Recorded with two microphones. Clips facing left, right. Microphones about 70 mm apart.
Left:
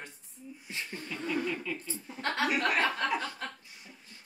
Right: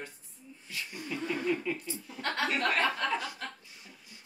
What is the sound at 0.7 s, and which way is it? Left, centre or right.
Speech, left.